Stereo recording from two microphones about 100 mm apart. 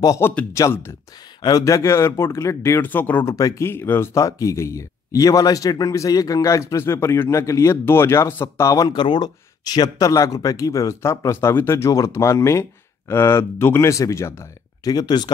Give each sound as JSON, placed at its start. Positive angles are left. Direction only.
{"t": 0.2, "sound": "speech", "side_deg": 25}
{"t": 2.9, "sound": "speech", "side_deg": 20}
{"t": 3.3, "sound": "speech", "side_deg": 35}
{"t": 8.8, "sound": "speech", "side_deg": 50}